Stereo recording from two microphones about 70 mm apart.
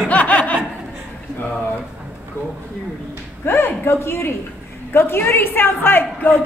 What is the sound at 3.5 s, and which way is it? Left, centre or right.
A woman's voice, left.